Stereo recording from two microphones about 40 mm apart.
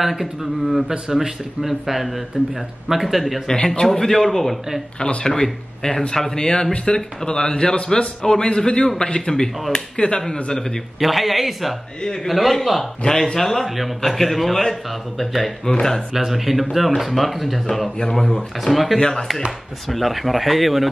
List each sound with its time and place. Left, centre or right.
0.0 s a man's voice: centre
3.4 s speech: centre
5.2 s speech: centre
11.0 s a man's voice: centre
12.0 s speech: centre
12.3 s a man's voice: centre
13.7 s a man's voice: centre
15.6 s speech: centre
16.1 s a man's voice: centre
18.9 s speech: centre
19.9 s a man's voice: centre